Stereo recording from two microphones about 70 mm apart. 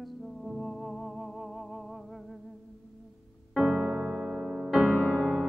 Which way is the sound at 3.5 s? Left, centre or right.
Right.